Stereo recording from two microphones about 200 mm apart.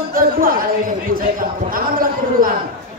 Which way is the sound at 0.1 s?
45° right (ahead or behind).